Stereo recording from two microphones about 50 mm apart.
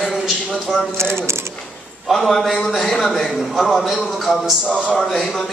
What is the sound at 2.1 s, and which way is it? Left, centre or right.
A man's voice, centre.